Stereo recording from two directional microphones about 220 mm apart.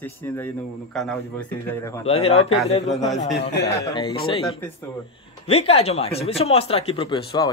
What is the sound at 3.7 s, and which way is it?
Speech, 15° left (ahead or behind).